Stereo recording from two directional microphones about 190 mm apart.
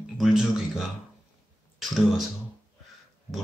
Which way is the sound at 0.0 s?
Centre (ahead or behind).